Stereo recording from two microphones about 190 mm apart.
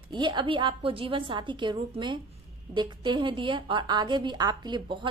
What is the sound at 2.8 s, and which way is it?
A woman's voice, 25° right (ahead or behind).